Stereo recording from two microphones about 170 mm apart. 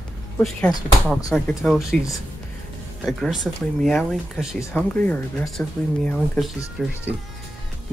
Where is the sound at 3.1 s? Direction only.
Centre (ahead or behind).